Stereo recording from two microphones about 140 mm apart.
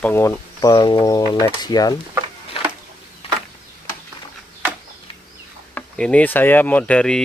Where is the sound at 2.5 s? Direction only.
40° left (ahead or behind).